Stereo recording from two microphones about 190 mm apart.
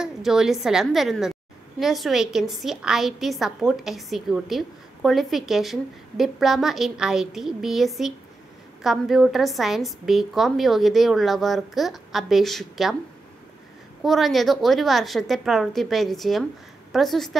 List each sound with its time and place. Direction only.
0.0 s a woman's voice: 5° right (ahead or behind)
14.0 s a woman's voice: centre (ahead or behind)